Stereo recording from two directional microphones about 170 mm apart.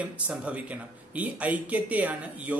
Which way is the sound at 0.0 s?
10° right (ahead or behind).